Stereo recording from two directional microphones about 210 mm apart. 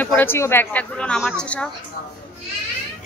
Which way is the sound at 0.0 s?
10° left (ahead or behind).